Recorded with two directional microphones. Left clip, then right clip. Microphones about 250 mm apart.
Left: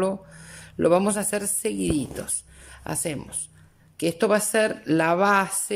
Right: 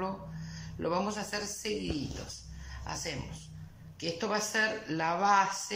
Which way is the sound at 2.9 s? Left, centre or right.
Left.